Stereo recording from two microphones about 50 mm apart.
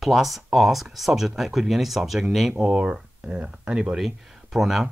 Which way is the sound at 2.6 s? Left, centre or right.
Centre.